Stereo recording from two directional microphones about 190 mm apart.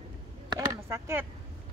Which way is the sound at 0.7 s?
15° right (ahead or behind).